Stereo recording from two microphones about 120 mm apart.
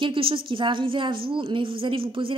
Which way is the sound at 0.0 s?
45° right (ahead or behind).